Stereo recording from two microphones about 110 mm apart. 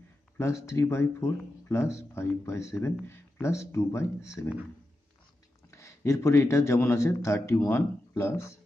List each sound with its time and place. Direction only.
0.4 s a man's voice: 25° left (ahead or behind)
5.7 s a man's voice: 25° left (ahead or behind)